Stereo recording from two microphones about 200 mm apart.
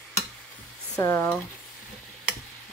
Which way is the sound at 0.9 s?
15° left (ahead or behind).